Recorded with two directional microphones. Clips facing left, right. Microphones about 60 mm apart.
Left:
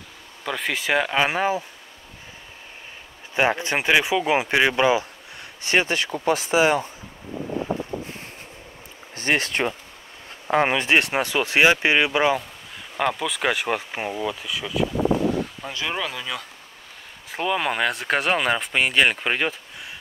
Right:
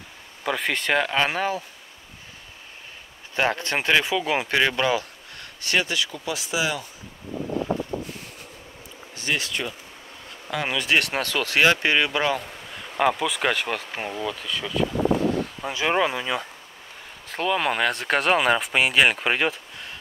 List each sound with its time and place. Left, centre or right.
0.4 s speech: centre
3.3 s speech: centre; by 6.9 s left
9.1 s speech: left; by 12.4 s centre
12.4 s speech: centre
15.6 s speech: centre
17.3 s speech: centre